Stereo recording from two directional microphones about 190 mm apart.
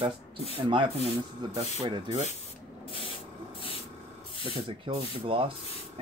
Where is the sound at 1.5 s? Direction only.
30° right (ahead or behind).